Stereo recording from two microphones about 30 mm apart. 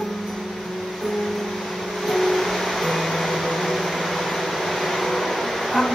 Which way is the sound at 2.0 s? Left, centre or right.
Centre.